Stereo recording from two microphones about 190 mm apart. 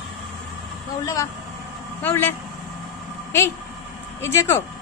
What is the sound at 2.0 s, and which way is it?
Speech, 10° left (ahead or behind).